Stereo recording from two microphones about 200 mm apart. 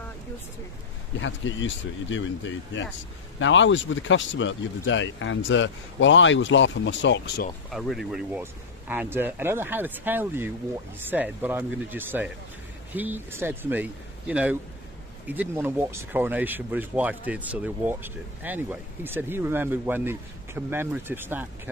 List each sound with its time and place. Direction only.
1.2 s speech: 70° left (ahead or behind)
7.7 s speech: centre (ahead or behind)